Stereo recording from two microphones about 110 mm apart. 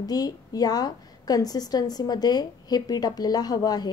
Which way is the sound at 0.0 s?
35° left (ahead or behind).